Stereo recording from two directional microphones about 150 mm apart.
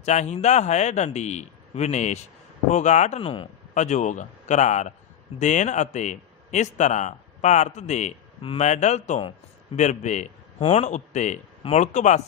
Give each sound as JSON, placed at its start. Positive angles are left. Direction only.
{"t": 0.0, "sound": "speech", "side_deg": 50}
{"t": 3.2, "sound": "a man's voice", "side_deg": 35}
{"t": 3.7, "sound": "speech", "side_deg": 50}
{"t": 8.4, "sound": "speech", "side_deg": 35}
{"t": 8.6, "sound": "speech", "side_deg": 50}